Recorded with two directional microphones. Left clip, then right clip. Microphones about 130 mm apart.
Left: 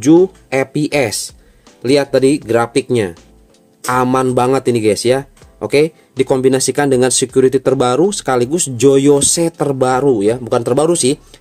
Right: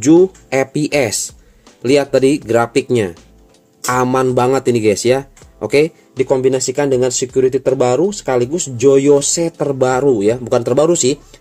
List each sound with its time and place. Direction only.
0.0 s speech: centre (ahead or behind)
6.1 s speech: 30° left (ahead or behind)
9.8 s speech: 10° left (ahead or behind)